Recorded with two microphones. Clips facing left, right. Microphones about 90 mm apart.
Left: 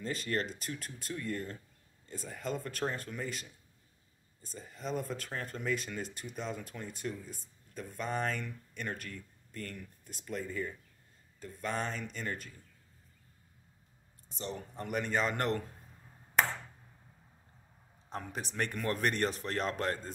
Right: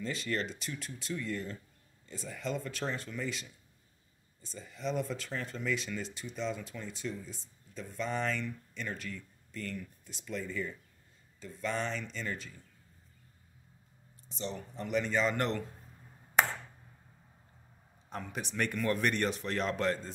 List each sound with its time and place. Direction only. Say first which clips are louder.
0.0 s speech: even; 45° left (ahead or behind)
4.6 s speech: right 2 dB; 45° left (ahead or behind)
14.8 s speech: right 2 dB; 50° left (ahead or behind)
18.1 s speech: right 1 dB; 35° left (ahead or behind)